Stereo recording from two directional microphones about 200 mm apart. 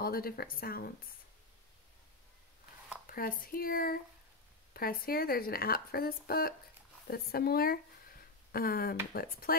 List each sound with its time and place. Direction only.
0.0 s speech: 50° left (ahead or behind)
3.1 s speech: 45° left (ahead or behind)